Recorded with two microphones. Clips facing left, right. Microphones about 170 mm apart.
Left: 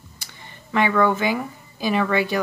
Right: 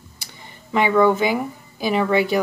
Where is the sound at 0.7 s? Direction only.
15° right (ahead or behind).